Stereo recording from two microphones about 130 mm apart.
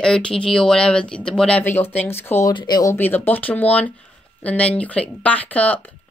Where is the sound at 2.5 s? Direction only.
30° left (ahead or behind).